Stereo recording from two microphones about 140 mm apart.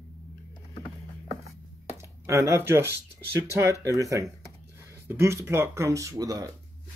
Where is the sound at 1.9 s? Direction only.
20° right (ahead or behind).